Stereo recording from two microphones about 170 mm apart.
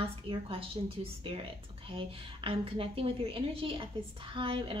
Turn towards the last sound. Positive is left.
turn(degrees=-30)  # may be behind; listen again after turning